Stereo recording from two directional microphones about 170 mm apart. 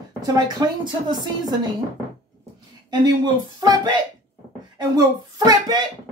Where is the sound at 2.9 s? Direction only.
25° right (ahead or behind).